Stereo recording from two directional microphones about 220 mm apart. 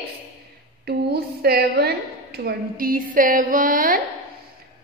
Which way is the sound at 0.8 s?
45° right (ahead or behind).